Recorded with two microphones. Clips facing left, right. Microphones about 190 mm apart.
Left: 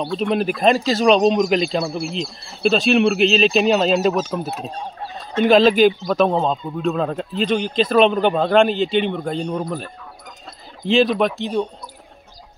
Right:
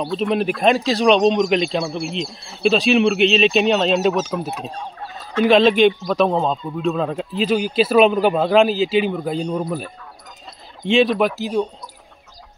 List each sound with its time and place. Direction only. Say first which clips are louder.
0.0 s a man's voice: even; centre (ahead or behind)
4.7 s a sound: left 1 dB; 25° left (ahead or behind)
5.4 s a man's voice: even; centre (ahead or behind)